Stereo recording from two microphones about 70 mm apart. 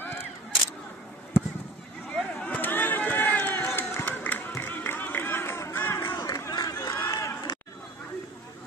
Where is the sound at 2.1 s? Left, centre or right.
Centre.